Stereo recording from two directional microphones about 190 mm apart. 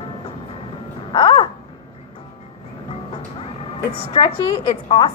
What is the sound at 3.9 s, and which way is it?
A woman's voice, 30° left (ahead or behind).